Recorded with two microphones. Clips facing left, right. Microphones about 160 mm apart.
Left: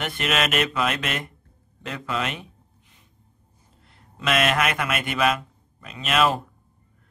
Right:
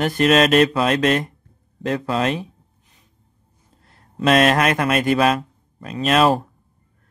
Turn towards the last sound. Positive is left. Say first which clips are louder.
# right 6 dB
turn(degrees=-35)  # may be behind; listen again after turning